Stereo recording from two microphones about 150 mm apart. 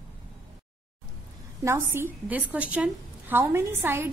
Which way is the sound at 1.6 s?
20° right (ahead or behind).